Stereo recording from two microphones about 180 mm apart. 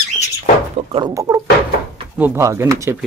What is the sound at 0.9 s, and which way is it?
Speech, 25° right (ahead or behind).